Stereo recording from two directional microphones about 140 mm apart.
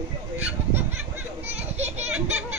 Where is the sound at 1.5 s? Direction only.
50° right (ahead or behind).